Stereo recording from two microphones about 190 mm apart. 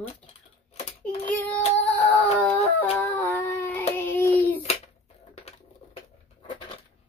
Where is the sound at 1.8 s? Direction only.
10° left (ahead or behind).